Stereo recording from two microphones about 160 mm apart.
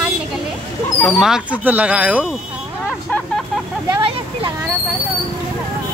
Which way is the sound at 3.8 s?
30° right (ahead or behind).